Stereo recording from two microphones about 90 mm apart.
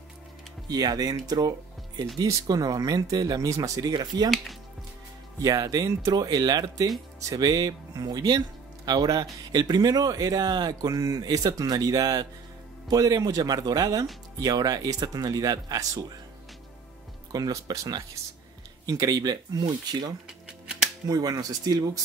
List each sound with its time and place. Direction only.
0.7 s speech: 45° right (ahead or behind)
3.9 s speech: 50° right (ahead or behind)
5.4 s speech: 40° right (ahead or behind)
17.3 s speech: 45° right (ahead or behind)
20.2 s music: 10° right (ahead or behind)
21.1 s speech: 45° right (ahead or behind)